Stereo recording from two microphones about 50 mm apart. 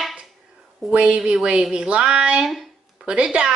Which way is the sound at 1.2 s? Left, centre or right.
Centre.